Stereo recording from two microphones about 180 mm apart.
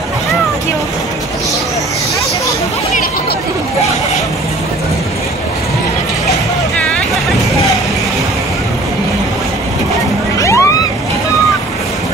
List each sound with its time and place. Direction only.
10.4 s vehicle: 15° left (ahead or behind)